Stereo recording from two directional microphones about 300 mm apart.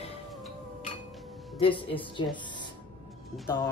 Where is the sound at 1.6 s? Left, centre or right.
Centre.